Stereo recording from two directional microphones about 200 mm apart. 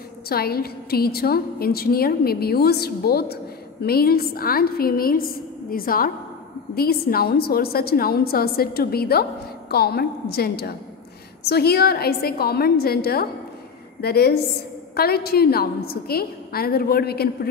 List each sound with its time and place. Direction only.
0.3 s a woman's voice: 50° left (ahead or behind)